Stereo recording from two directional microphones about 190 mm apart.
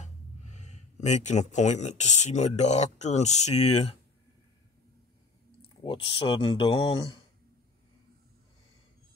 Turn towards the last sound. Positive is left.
turn(degrees=25)  # may be behind; listen again after turning